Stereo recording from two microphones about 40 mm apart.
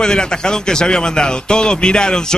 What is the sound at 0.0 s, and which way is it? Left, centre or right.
A man's voice, centre.